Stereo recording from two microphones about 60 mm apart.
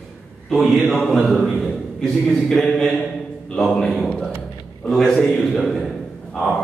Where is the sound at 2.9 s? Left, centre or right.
Centre.